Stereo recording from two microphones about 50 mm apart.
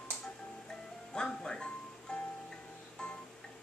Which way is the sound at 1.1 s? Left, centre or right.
Centre.